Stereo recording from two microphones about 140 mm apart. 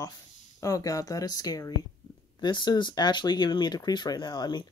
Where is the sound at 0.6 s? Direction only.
25° left (ahead or behind).